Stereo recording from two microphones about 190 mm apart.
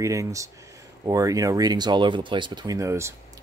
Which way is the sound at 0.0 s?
15° right (ahead or behind).